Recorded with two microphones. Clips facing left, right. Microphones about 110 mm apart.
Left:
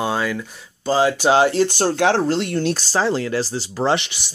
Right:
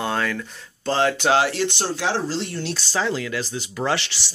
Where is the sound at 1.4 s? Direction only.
30° left (ahead or behind).